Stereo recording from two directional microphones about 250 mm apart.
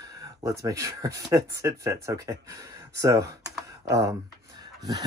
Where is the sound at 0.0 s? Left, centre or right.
Centre.